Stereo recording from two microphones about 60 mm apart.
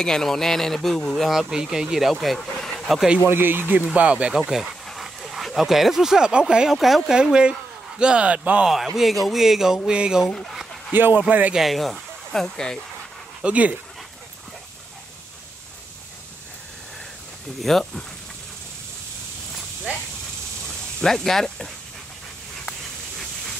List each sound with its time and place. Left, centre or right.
0.0 s speech: centre
3.3 s speech: right
3.8 s speech: right
4.3 s speech: centre
7.2 s speech: centre
8.6 s speech: centre
10.3 s speech: centre
10.9 s speech: right
11.5 s speech: centre
13.4 s speech: right
17.6 s speech: centre
21.0 s speech: centre